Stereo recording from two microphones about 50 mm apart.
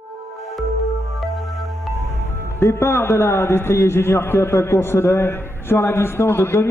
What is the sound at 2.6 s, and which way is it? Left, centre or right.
A man's voice, left.